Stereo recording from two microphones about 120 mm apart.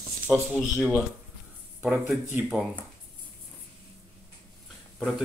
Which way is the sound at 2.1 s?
5° right (ahead or behind).